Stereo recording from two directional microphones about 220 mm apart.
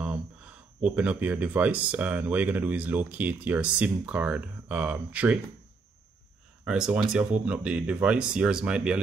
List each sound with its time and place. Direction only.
0.8 s speech: 5° right (ahead or behind)
6.6 s speech: 5° right (ahead or behind)